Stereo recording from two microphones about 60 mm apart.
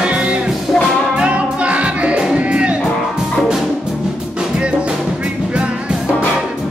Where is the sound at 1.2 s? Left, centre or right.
Right.